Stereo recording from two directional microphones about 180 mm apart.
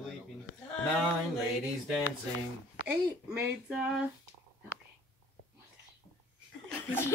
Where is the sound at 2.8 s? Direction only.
90° left.